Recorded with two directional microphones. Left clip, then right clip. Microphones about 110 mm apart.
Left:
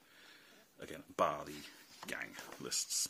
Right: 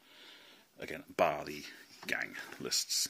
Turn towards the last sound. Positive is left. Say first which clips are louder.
# right 5 dB
turn(degrees=-20)  # may be behind; listen again after turning